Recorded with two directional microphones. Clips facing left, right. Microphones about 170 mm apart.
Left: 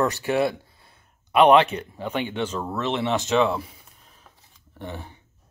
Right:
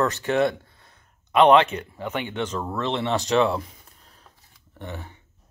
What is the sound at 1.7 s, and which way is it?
Speech, 30° left (ahead or behind).